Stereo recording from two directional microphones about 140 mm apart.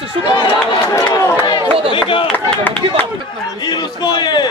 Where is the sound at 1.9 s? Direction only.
40° left (ahead or behind).